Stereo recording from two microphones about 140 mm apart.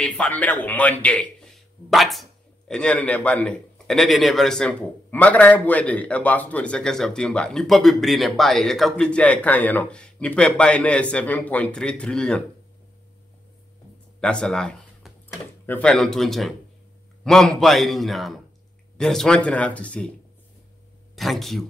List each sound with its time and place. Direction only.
0.0 s a man's voice: 10° left (ahead or behind)
14.2 s speech: 5° left (ahead or behind)
15.9 s a man's voice: 5° left (ahead or behind)
21.2 s a man's voice: centre (ahead or behind)